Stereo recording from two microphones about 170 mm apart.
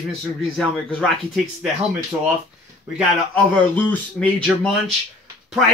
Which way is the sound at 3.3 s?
10° left (ahead or behind).